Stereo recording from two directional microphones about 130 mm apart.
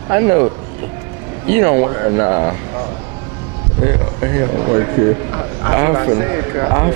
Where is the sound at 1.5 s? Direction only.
20° right (ahead or behind).